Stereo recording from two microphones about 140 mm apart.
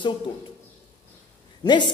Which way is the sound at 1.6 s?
35° left (ahead or behind).